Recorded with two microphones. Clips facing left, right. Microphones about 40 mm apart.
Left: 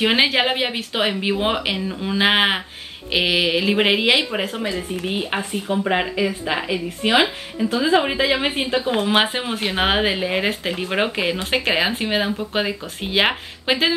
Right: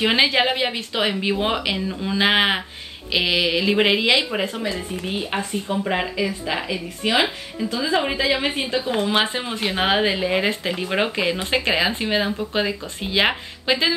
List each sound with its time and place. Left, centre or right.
0.0 s speech: centre